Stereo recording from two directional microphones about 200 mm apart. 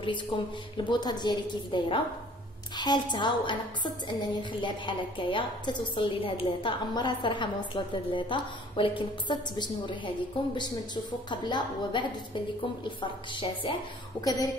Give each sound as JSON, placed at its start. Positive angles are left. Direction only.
{"t": 0.7, "sound": "a woman's voice", "side_deg": 20}